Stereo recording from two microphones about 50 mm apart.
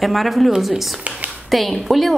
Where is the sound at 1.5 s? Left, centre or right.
Centre.